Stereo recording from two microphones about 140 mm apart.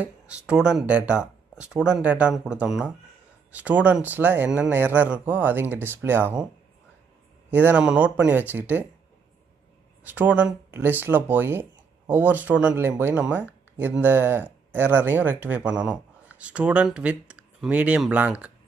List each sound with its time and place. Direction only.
0.0 s a man's voice: 5° right (ahead or behind)
7.5 s a man's voice: 10° right (ahead or behind)
10.0 s a man's voice: 10° right (ahead or behind)